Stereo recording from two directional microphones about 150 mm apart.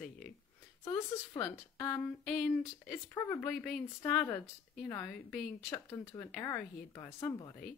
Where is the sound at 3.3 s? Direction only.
5° left (ahead or behind).